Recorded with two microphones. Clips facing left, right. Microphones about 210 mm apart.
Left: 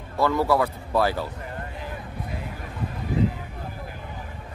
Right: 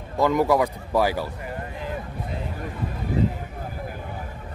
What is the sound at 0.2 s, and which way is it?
A man's voice, 15° right (ahead or behind).